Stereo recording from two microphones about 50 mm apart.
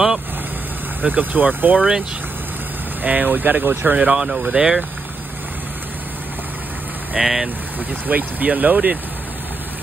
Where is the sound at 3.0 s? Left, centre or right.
Right.